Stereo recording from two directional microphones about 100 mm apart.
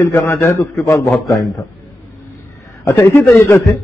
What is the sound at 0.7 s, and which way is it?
Speech, centre (ahead or behind).